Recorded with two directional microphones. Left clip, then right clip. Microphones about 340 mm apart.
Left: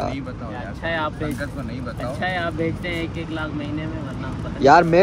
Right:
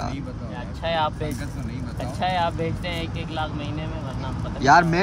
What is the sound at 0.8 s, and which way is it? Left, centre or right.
Speech, centre.